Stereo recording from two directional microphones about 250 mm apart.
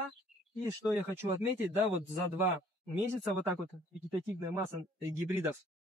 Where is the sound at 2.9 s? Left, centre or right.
Centre.